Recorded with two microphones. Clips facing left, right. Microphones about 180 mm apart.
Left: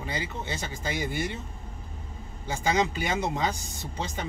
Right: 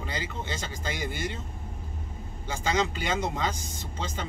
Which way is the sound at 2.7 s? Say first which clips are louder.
Left 1 dB; 15° left (ahead or behind).